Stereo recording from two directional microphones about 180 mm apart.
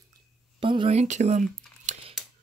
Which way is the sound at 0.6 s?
30° right (ahead or behind).